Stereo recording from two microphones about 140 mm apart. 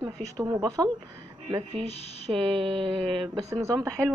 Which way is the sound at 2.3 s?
5° left (ahead or behind).